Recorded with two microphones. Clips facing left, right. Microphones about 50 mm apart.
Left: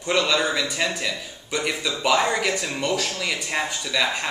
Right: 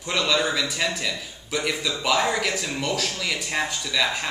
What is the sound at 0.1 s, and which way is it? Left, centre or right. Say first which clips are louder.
A man's voice: left 2 dB; centre.